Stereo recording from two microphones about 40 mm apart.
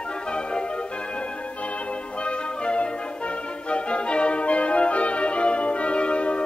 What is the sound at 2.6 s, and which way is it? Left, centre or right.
Music, left.